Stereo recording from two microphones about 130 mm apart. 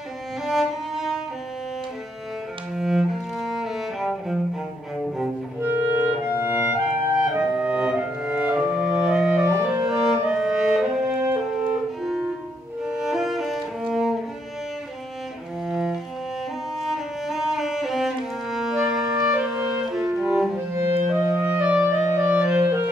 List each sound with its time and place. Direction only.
0.5 s music: centre (ahead or behind)
2.7 s cello: 5° right (ahead or behind)
5.6 s clarinet: 15° right (ahead or behind)
9.8 s music: 5° right (ahead or behind)
15.6 s cello: 5° right (ahead or behind)
16.8 s music: centre (ahead or behind)
19.9 s clarinet: 5° right (ahead or behind)
20.7 s music: 20° right (ahead or behind)
21.1 s clarinet: 10° right (ahead or behind)